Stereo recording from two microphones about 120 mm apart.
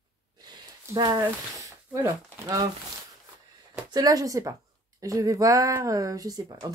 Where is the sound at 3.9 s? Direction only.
30° right (ahead or behind).